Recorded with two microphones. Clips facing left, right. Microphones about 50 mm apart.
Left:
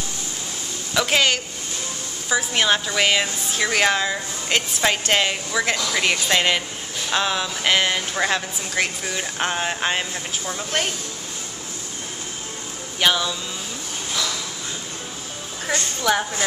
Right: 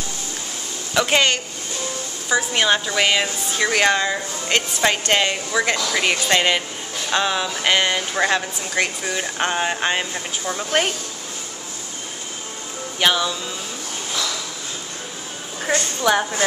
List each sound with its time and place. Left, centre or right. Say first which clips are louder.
0.9 s a woman's voice: right 2 dB; centre
13.0 s a woman's voice: right 1 dB; centre
15.7 s a woman's voice: right 3 dB; centre